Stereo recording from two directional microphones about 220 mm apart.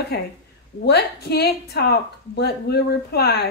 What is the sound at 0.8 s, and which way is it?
A woman's voice, 50° left (ahead or behind).